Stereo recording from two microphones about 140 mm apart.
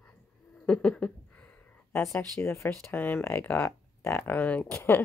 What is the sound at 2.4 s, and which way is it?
Speech, 20° left (ahead or behind).